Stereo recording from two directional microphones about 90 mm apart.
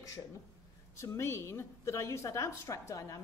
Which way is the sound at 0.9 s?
30° left (ahead or behind).